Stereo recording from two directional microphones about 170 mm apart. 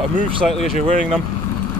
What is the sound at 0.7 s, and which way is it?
Speech, 45° right (ahead or behind).